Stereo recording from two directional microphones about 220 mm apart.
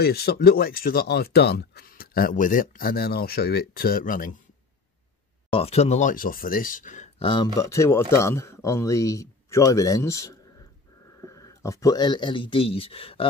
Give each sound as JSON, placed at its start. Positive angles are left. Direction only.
{"t": 0.0, "sound": "speech", "side_deg": 45}
{"t": 5.5, "sound": "speech", "side_deg": 25}